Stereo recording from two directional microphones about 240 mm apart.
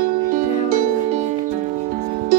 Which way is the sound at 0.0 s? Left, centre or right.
Right.